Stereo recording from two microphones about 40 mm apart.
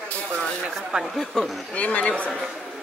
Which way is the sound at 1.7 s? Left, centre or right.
Left.